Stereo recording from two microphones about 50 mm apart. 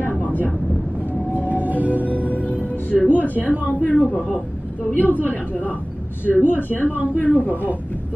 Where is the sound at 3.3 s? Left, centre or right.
Right.